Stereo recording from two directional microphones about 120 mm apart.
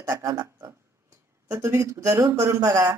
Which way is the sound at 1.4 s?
25° right (ahead or behind).